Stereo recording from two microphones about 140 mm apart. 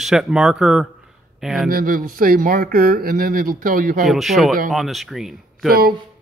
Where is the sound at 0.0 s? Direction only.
5° right (ahead or behind).